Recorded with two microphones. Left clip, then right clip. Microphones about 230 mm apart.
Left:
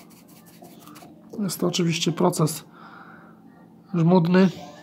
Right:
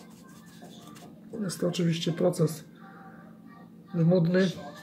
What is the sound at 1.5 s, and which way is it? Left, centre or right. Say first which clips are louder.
Speech: left 5 dB; left.